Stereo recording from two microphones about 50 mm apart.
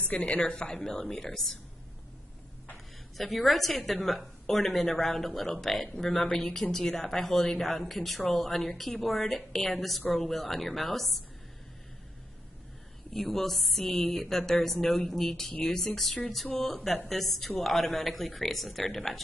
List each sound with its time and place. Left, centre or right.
0.1 s a woman's voice: left; by 1.6 s centre
3.2 s a woman's voice: centre
13.1 s a woman's voice: centre